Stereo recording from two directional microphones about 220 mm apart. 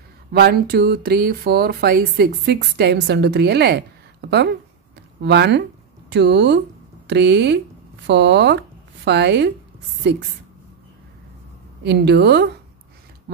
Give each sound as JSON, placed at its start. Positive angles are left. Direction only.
{"t": 0.3, "sound": "speech", "side_deg": -45}
{"t": 11.8, "sound": "speech", "side_deg": -50}